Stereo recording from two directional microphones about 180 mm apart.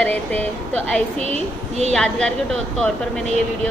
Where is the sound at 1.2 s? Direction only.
35° right (ahead or behind).